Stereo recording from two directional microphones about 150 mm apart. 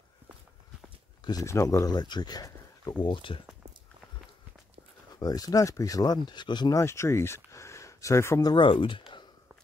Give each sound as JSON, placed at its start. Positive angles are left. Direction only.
{"t": 1.2, "sound": "speech", "side_deg": 20}
{"t": 5.2, "sound": "speech", "side_deg": 25}
{"t": 6.8, "sound": "speech", "side_deg": 20}